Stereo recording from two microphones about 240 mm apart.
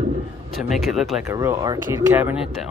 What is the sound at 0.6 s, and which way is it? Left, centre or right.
Speech, centre.